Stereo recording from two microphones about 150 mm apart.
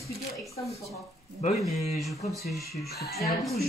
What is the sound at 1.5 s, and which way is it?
Speech, centre (ahead or behind).